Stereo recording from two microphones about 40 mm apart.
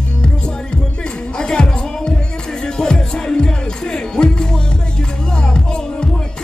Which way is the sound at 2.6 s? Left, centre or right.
Centre.